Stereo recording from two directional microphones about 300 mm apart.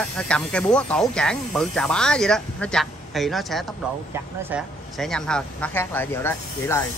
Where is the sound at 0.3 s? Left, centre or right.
Centre.